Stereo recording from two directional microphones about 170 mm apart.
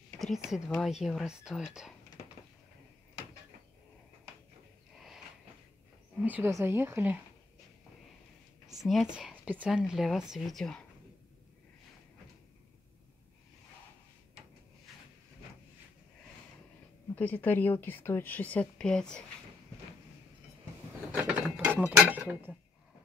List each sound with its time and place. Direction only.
0.2 s speech: centre (ahead or behind)
6.2 s a woman's voice: 10° right (ahead or behind)
8.6 s speech: centre (ahead or behind)
17.1 s a woman's voice: 10° left (ahead or behind)
21.1 s mechanisms: 5° right (ahead or behind)
22.2 s a woman's voice: 10° right (ahead or behind)